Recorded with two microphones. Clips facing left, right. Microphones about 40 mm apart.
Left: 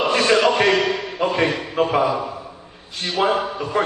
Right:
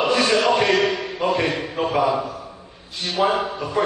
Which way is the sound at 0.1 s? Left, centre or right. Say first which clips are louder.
Left 2 dB; left.